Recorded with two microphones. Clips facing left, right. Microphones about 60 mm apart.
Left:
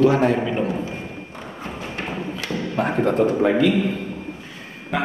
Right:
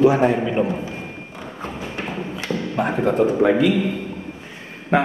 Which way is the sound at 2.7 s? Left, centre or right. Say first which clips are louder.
Even; centre.